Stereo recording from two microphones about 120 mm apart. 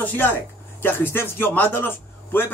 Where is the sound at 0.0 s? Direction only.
15° left (ahead or behind).